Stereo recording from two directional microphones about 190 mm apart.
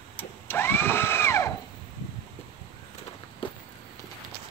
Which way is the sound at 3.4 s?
25° left (ahead or behind).